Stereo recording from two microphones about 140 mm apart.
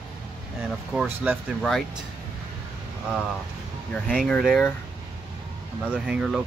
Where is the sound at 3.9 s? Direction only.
5° left (ahead or behind).